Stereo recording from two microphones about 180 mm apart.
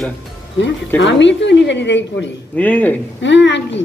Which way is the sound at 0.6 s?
90° left.